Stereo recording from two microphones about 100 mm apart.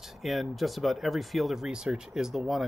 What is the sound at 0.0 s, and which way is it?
Speech, centre (ahead or behind).